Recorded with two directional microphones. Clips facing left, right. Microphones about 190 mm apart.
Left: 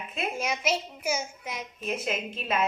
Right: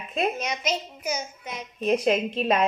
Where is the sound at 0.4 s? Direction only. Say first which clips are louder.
Even; 5° left (ahead or behind).